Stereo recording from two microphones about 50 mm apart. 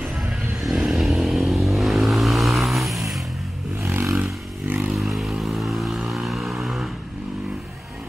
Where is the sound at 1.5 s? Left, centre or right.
Centre.